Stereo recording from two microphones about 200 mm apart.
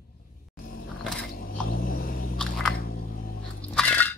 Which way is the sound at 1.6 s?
45° left (ahead or behind).